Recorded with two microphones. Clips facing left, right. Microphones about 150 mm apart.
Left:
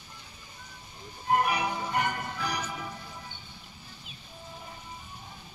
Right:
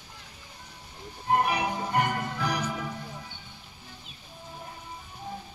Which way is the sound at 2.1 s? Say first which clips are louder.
Right 4 dB; 90° right.